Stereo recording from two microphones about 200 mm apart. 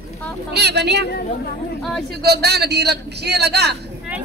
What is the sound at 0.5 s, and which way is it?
Speech, 55° right (ahead or behind).